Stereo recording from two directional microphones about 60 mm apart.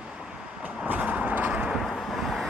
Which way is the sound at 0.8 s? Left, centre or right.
Right.